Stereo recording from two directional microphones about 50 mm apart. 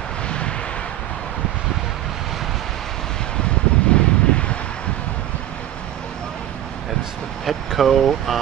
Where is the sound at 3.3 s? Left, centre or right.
Left.